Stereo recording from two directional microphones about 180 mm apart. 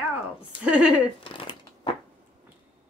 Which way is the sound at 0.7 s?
5° right (ahead or behind).